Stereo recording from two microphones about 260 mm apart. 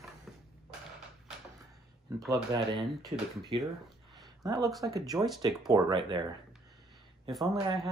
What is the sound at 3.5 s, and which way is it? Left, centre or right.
Speech, centre.